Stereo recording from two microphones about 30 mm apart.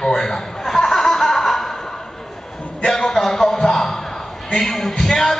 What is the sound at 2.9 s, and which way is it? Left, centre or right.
A man's voice, centre.